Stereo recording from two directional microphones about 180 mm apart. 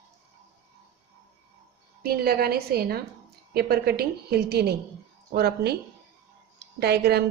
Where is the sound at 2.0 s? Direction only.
55° right (ahead or behind).